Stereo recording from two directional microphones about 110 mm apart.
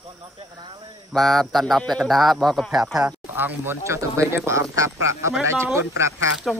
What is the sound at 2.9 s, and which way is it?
Speech, 15° right (ahead or behind).